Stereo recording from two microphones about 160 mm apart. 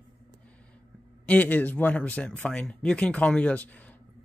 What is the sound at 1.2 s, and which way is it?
Speech, 10° left (ahead or behind).